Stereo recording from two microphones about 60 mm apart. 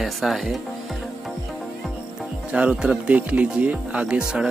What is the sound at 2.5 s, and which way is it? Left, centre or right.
Speech, centre.